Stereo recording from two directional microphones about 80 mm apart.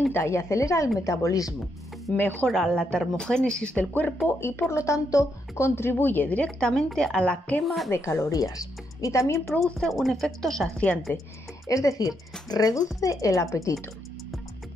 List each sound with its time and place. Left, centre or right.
0.1 s speech: left
2.1 s speech: left
2.4 s a woman's voice: centre
4.3 s speech: left
5.8 s a woman's voice: left
7.6 s speech: centre
7.9 s speech: left
8.3 s speech: left
9.8 s speech: centre
11.1 s speech: left
11.6 s speech: left